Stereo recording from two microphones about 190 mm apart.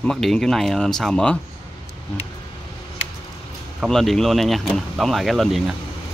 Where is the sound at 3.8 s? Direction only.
Centre (ahead or behind).